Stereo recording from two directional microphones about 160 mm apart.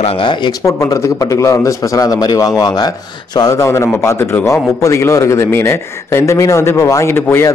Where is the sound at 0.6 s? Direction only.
20° left (ahead or behind).